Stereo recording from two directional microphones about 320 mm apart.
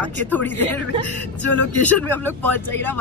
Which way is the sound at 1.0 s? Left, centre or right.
Right.